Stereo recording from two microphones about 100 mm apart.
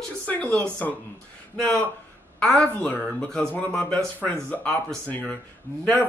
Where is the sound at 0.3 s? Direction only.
15° left (ahead or behind).